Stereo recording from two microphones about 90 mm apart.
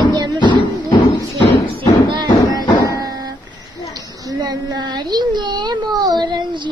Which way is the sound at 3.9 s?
45° right (ahead or behind).